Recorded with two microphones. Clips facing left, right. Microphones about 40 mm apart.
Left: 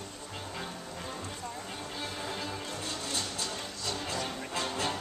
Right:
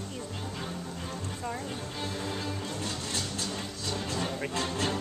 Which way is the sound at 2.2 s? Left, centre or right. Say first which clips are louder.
Right 1 dB; centre.